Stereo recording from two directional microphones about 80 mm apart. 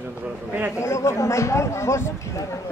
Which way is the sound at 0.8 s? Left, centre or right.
Left.